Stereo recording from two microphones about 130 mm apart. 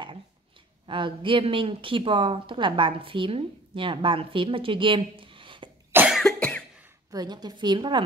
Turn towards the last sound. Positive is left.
turn(degrees=-35)  # may be behind; listen again after turning